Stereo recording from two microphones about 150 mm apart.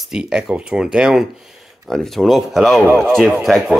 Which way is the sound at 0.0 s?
5° right (ahead or behind).